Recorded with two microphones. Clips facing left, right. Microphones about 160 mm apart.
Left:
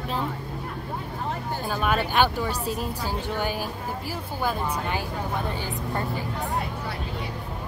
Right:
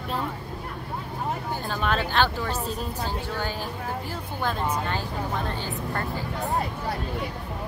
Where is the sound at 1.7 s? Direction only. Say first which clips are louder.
Left 2 dB; 10° left (ahead or behind).